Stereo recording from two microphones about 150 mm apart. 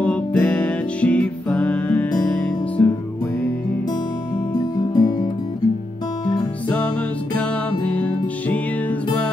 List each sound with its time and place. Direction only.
0.0 s music: 10° left (ahead or behind)
4.6 s music: 25° left (ahead or behind)